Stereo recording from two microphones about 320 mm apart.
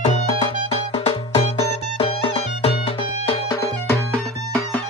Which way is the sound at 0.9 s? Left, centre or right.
Centre.